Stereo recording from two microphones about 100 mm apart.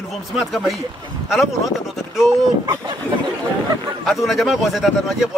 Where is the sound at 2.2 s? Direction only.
45° right (ahead or behind).